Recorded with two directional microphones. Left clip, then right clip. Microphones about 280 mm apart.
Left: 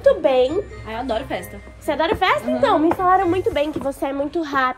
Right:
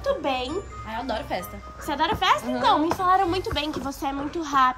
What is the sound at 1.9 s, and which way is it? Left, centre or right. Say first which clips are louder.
A woman's voice: left 4 dB; centre.